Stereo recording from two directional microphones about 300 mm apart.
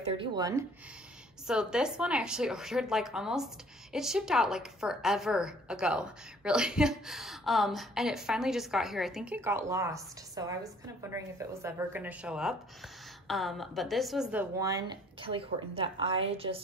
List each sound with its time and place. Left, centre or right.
0.0 s a woman's voice: centre